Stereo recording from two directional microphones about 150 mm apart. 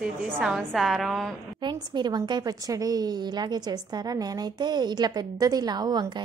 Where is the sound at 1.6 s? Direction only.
30° right (ahead or behind).